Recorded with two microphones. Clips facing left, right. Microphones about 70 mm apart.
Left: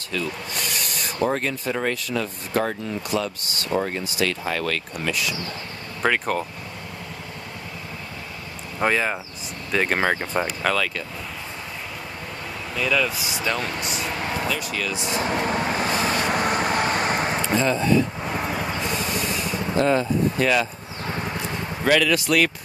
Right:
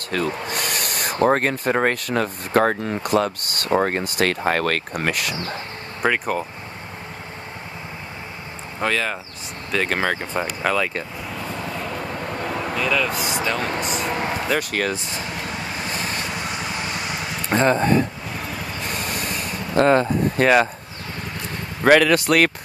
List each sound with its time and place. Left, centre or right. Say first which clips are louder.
0.1 s speech: right 5 dB; right
5.3 s speech: right 3 dB; right
6.0 s speech: right 1 dB; centre
8.8 s speech: left 1 dB; centre
10.4 s speech: right 4 dB; centre
12.4 s vehicle: right 9 dB; right
12.7 s speech: left 1 dB; centre
14.1 s speech: right 3 dB; right
14.5 s speech: right 5 dB; right
15.3 s vehicle: left 6 dB; left
17.5 s speech: right 5 dB; right
18.2 s vehicle: left 4 dB; left
18.9 s a sound: left 1 dB; right
21.8 s speech: right 5 dB; right